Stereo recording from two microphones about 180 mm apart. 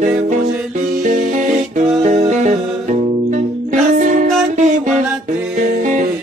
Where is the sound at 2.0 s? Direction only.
40° right (ahead or behind).